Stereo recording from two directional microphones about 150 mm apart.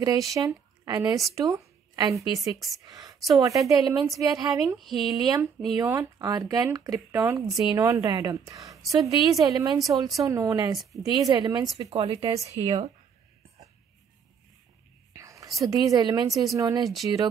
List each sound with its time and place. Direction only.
0.0 s speech: 25° right (ahead or behind)
1.3 s a sound: 20° right (ahead or behind)
2.3 s a woman's voice: 20° right (ahead or behind)
4.7 s speech: centre (ahead or behind)
5.1 s speech: 25° right (ahead or behind); by 12.9 s 45° right (ahead or behind)
15.1 s whispering: 20° right (ahead or behind)
15.6 s speech: 25° right (ahead or behind)